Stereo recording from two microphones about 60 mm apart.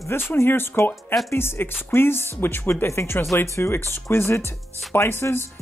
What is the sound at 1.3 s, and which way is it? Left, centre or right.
Speech, left.